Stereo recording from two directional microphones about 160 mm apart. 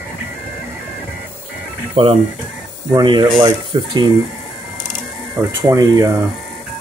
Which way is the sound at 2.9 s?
30° right (ahead or behind).